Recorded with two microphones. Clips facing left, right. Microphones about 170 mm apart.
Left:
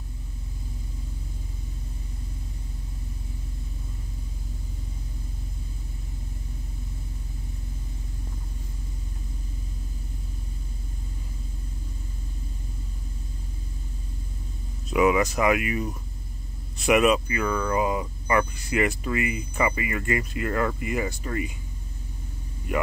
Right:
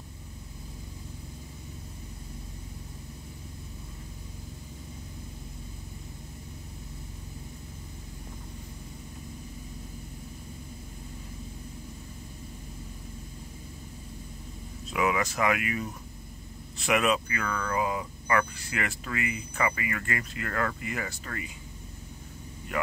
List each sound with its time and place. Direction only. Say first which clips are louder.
14.9 s speech: left 7 dB; 20° left (ahead or behind)